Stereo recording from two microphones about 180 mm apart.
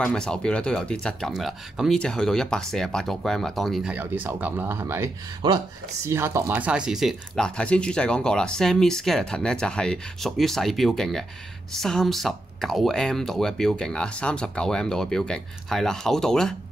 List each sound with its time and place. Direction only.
0.0 s speech: 5° left (ahead or behind)
3.9 s speech: 10° right (ahead or behind)